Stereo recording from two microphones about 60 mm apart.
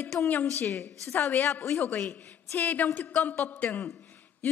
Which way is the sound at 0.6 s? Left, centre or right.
Left.